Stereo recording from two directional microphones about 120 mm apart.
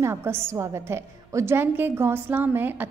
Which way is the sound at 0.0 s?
20° right (ahead or behind).